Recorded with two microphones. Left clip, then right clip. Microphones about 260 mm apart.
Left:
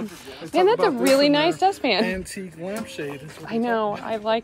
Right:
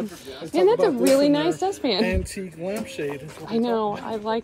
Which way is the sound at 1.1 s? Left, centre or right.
Centre.